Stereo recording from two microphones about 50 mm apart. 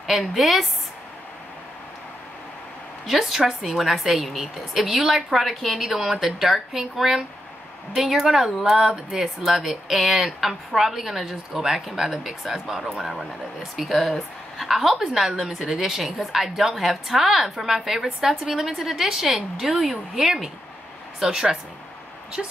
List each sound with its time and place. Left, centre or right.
0.0 s a woman's voice: centre
3.1 s a woman's voice: centre